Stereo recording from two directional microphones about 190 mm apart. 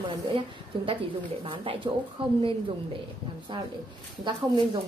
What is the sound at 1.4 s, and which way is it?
Speech, 30° right (ahead or behind).